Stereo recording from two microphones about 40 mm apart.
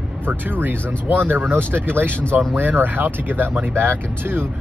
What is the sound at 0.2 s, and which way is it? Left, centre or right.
Speech, right.